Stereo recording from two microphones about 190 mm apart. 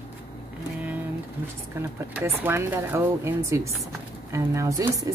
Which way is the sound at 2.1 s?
10° right (ahead or behind).